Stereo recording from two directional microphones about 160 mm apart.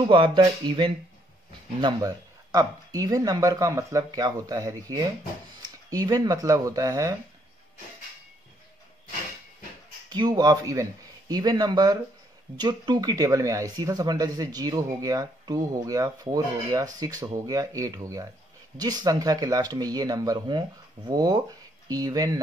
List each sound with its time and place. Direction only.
0.1 s speech: 30° right (ahead or behind)
10.0 s speech: 25° right (ahead or behind)